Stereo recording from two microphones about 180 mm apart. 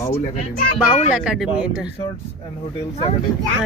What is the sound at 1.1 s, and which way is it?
Speech, 5° right (ahead or behind).